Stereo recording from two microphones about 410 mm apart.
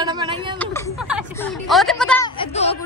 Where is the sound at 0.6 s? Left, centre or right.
Centre.